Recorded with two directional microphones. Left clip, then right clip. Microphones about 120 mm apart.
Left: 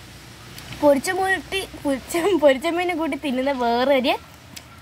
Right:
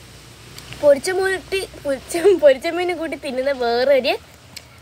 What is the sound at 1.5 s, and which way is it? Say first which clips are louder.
Speech: right 2 dB; 10° right (ahead or behind).